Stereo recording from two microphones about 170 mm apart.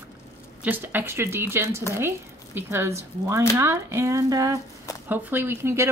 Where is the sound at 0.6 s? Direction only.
10° right (ahead or behind).